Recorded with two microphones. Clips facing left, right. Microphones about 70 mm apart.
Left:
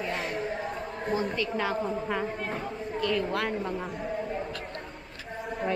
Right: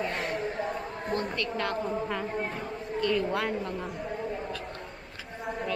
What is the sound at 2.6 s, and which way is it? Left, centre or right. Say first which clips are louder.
Speech: even; centre.